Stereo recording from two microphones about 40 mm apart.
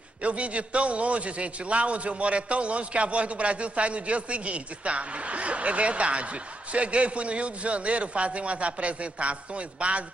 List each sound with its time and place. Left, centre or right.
0.2 s a man's voice: right